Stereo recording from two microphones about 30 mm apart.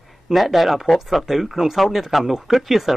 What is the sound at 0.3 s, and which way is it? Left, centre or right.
Speech, centre.